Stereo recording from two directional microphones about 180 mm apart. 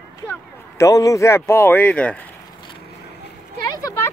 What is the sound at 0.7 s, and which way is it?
Speech, 20° left (ahead or behind).